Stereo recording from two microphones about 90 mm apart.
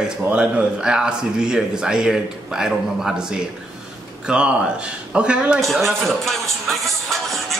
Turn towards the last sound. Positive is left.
turn(degrees=0)  # may be behind; listen again after turning